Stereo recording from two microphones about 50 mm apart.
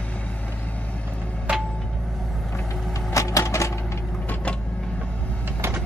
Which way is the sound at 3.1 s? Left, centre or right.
Left.